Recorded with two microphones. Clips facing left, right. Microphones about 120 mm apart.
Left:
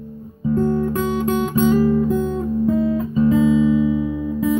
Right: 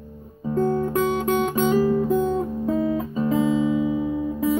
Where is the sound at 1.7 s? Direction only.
30° right (ahead or behind).